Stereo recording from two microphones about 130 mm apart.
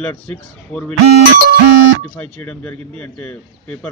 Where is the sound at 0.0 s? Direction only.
10° left (ahead or behind).